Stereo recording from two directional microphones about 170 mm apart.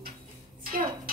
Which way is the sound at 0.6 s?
55° right (ahead or behind).